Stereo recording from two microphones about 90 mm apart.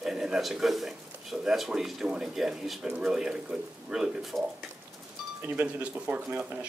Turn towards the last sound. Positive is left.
turn(degrees=-15)  # may be behind; listen again after turning